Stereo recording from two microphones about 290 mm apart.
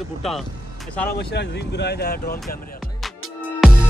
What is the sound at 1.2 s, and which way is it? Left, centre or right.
Speech, left.